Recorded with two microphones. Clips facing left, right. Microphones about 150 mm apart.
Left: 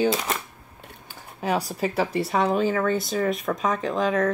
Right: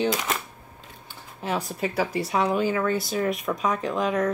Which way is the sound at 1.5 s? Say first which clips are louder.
Left 2 dB; 35° left (ahead or behind).